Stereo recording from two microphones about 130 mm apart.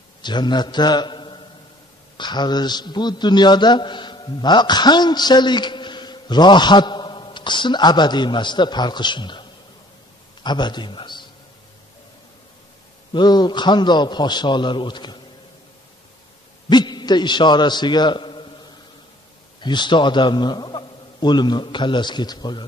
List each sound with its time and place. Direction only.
0.2 s a man's voice: 35° left (ahead or behind)
13.1 s a man's voice: 35° left (ahead or behind)
16.6 s a man's voice: 35° left (ahead or behind)
19.6 s a man's voice: 35° left (ahead or behind)